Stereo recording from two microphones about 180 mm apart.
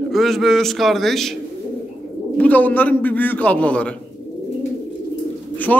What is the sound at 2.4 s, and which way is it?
A man's voice, 10° left (ahead or behind).